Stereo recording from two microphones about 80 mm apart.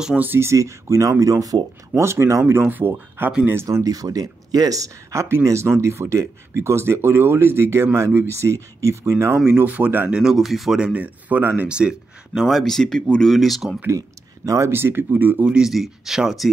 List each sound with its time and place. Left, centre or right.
0.2 s speech: right
2.0 s speech: right
3.6 s speech: right
9.5 s speech: right
10.2 s speech: centre
10.9 s speech: centre
13.8 s speech: right
14.7 s speech: right
15.5 s speech: centre